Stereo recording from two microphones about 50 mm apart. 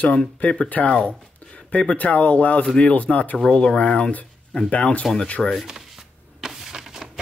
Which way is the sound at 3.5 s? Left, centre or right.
Centre.